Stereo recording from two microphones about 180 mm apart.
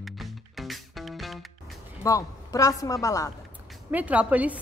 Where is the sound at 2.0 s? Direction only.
20° left (ahead or behind).